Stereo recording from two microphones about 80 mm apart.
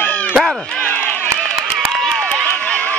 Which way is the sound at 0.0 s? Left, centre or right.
Centre.